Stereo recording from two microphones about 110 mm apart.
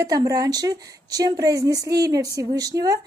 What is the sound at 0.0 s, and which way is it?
Speech, 30° right (ahead or behind).